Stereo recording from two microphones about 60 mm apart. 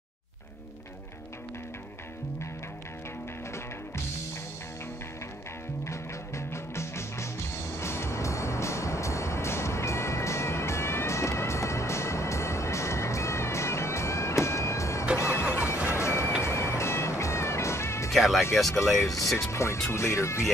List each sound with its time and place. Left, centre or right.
5.9 s music: left
18.1 s speech: centre
19.5 s speech: left